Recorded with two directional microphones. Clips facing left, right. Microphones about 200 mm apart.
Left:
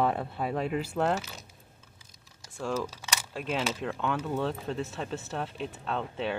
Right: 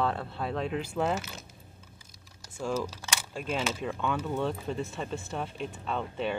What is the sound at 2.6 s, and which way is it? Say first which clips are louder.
Speech: even; centre (ahead or behind).